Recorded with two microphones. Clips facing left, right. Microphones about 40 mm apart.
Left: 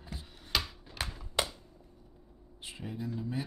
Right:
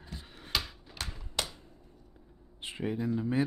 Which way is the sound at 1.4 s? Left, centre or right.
Centre.